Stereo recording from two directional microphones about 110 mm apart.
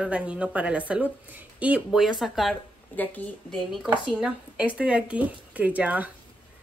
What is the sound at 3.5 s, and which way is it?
Speech, 5° right (ahead or behind).